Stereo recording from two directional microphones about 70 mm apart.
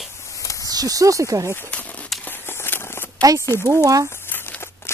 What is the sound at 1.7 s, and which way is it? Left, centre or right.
Crumpling, left.